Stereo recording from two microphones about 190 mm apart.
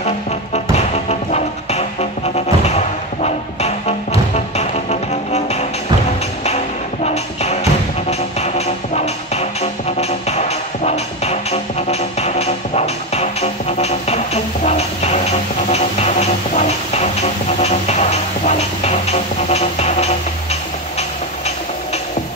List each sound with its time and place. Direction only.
0.7 s music: 35° left (ahead or behind)
5.3 s music: 35° left (ahead or behind)
7.1 s music: 35° left (ahead or behind)